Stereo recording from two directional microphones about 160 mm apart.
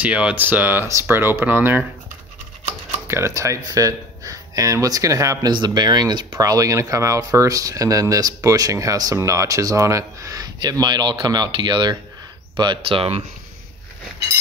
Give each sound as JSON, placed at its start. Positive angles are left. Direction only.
{"t": 0.0, "sound": "speech", "side_deg": -5}
{"t": 3.1, "sound": "speech", "side_deg": -15}